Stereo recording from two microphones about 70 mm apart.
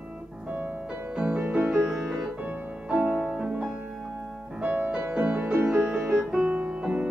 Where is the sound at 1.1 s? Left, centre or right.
Centre.